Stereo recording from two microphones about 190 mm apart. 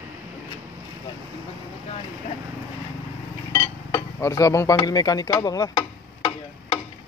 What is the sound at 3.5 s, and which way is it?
Dishes, 15° left (ahead or behind).